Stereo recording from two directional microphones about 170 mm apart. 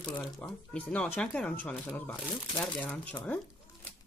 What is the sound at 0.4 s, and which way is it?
Speech, 10° left (ahead or behind).